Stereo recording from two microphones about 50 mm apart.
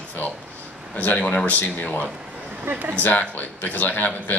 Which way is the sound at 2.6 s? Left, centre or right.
Right.